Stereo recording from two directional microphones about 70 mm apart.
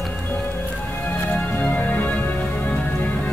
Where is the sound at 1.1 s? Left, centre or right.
Left.